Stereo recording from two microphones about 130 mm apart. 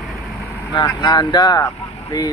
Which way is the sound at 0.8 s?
35° left (ahead or behind).